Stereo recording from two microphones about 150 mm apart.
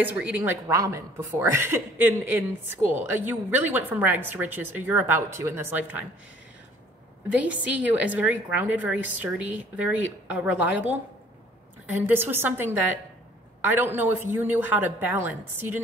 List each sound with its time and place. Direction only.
0.0 s a woman's voice: 10° right (ahead or behind)
7.2 s a woman's voice: 10° right (ahead or behind)